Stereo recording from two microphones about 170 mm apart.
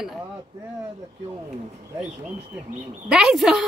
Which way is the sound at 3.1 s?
5° right (ahead or behind).